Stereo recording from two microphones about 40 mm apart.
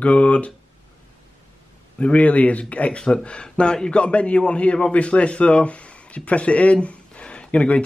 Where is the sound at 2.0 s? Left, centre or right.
Left.